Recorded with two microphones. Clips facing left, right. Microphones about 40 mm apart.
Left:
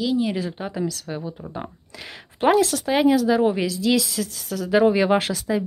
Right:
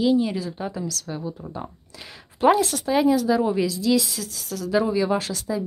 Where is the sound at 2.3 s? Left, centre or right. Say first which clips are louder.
Even; left.